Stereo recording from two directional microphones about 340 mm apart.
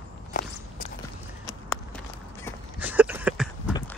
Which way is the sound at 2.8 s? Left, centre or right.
Centre.